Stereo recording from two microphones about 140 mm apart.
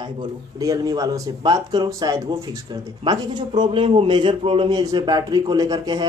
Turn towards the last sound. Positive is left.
turn(degrees=-25)  # may be behind; listen again after turning